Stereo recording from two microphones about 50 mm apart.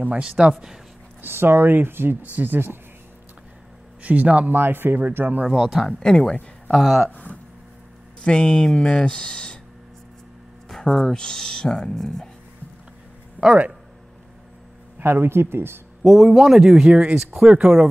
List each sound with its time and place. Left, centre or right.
0.4 s a man's voice: centre
1.2 s speech: right
4.0 s a man's voice: right
4.6 s speech: right
5.5 s a man's voice: centre
5.9 s speech: centre
6.7 s a man's voice: centre
7.1 s speech: left
8.2 s speech: centre
10.7 s speech: centre
13.4 s a sound: right
15.0 s speech: right
16.0 s a man's voice: centre
16.9 s a man's voice: right